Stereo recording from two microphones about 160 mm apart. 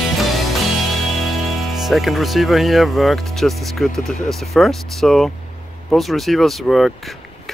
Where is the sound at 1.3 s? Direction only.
Centre (ahead or behind).